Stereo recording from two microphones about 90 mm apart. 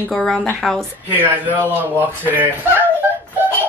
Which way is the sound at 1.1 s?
25° right (ahead or behind).